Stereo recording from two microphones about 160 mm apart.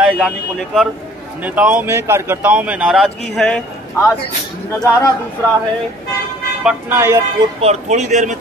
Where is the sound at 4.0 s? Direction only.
15° left (ahead or behind).